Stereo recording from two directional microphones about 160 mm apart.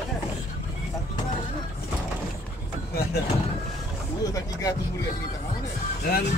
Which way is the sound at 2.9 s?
80° left.